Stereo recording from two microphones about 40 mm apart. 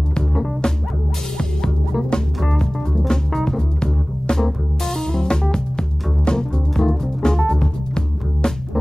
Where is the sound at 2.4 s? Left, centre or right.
Centre.